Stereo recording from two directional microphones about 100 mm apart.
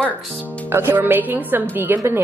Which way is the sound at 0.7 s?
25° right (ahead or behind).